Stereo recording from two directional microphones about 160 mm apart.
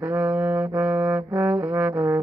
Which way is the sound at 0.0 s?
10° right (ahead or behind).